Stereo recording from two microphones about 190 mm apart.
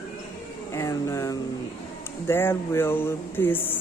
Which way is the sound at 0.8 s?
15° left (ahead or behind).